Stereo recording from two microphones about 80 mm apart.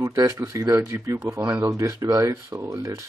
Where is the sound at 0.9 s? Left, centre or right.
Right.